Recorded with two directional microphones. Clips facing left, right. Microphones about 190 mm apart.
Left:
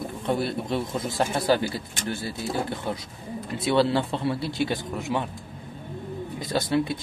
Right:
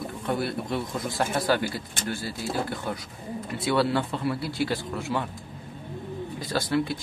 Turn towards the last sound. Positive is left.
turn(degrees=20)  # may be behind; listen again after turning